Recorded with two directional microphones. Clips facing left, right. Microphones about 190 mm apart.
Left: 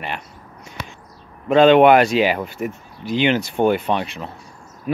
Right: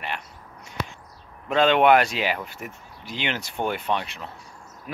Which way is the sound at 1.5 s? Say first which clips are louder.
Left 7 dB; 15° left (ahead or behind).